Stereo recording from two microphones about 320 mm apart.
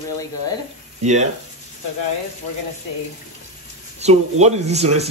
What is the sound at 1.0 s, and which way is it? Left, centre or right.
Speech, right.